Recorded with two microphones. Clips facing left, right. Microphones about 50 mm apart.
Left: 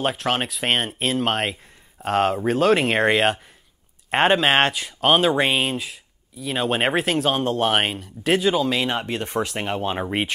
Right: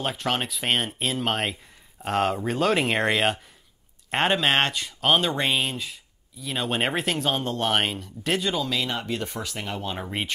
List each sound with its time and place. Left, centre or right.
0.0 s speech: centre
8.6 s speech: left